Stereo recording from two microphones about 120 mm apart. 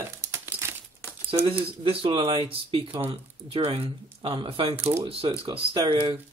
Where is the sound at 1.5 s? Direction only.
45° right (ahead or behind).